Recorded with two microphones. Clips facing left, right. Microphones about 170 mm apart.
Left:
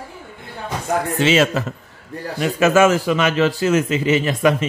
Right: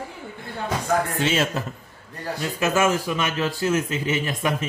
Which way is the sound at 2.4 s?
80° left.